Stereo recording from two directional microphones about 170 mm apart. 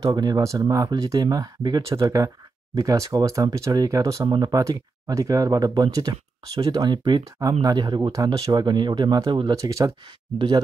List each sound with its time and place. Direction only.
0.0 s speech: 25° right (ahead or behind)